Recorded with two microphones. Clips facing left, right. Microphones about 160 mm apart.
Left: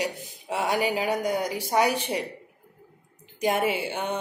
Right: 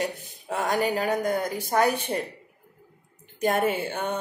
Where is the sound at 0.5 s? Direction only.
10° left (ahead or behind).